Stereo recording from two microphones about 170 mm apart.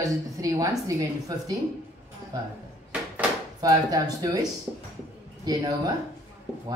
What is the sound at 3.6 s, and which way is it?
Speech, 20° right (ahead or behind).